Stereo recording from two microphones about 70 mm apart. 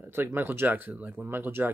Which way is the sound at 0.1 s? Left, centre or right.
Right.